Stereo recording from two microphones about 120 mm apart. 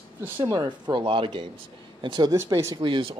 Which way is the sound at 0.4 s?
35° right (ahead or behind).